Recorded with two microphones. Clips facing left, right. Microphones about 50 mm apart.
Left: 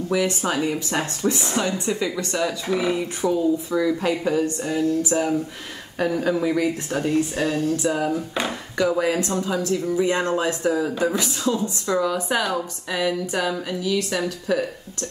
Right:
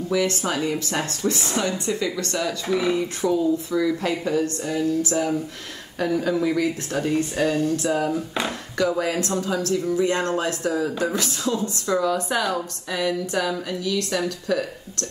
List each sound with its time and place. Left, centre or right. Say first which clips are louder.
0.3 s speech: left 1 dB; centre
4.7 s speech: left 1 dB; centre
7.0 s speech: even; centre
11.5 s speech: left 2 dB; centre
11.8 s speech: right 2 dB; centre